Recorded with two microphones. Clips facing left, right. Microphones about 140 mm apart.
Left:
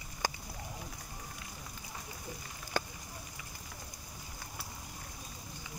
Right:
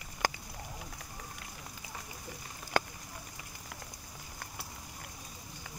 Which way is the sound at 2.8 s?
60° right (ahead or behind).